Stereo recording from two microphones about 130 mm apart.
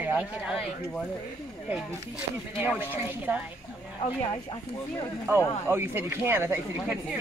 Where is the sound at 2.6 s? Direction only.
15° right (ahead or behind).